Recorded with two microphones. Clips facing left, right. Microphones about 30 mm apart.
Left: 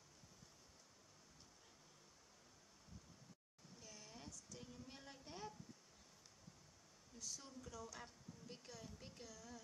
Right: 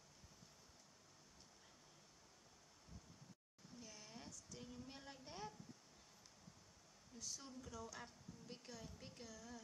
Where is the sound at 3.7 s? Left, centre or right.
Centre.